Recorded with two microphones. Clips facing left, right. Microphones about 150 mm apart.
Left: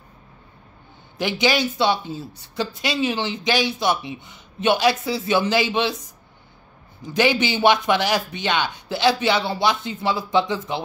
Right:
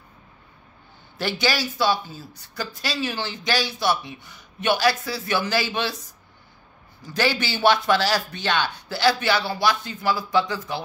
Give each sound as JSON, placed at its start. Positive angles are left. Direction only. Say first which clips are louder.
{"t": 1.1, "sound": "speech", "louder": "left 4 dB", "side_deg": 20}
{"t": 7.0, "sound": "speech", "louder": "left 4 dB", "side_deg": 20}